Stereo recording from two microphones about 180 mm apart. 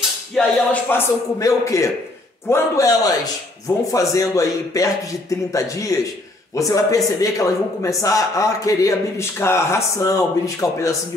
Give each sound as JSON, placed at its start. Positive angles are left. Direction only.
{"t": 0.4, "sound": "speech", "side_deg": 0}
{"t": 0.8, "sound": "speech", "side_deg": 15}